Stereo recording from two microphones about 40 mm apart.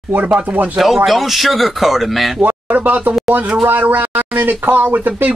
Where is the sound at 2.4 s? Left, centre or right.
Right.